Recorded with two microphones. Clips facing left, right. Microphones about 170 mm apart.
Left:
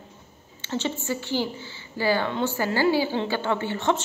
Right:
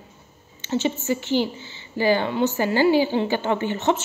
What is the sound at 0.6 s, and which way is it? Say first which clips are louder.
A woman's voice: right 5 dB; 15° right (ahead or behind).